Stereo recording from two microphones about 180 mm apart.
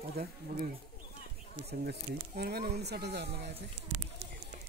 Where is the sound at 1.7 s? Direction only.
60° right (ahead or behind).